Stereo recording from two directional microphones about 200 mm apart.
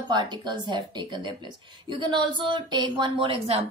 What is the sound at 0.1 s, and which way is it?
Speech, 20° right (ahead or behind).